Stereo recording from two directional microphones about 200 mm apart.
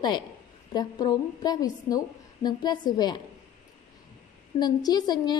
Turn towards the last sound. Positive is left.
turn(degrees=20)  # may be behind; listen again after turning